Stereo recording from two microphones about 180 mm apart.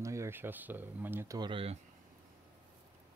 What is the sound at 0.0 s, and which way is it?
Speech, 15° right (ahead or behind).